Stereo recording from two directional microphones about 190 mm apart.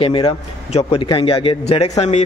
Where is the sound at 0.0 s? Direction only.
30° left (ahead or behind).